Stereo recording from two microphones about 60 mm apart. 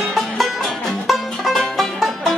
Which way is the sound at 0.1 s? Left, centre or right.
Centre.